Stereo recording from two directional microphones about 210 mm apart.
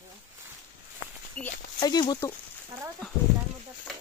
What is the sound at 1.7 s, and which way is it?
Speech, 20° left (ahead or behind).